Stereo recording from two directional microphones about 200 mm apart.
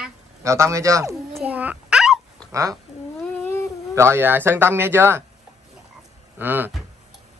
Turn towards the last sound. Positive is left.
turn(degrees=-10)  # may be behind; listen again after turning